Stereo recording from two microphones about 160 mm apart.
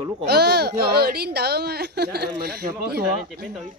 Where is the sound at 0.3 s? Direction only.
90° right.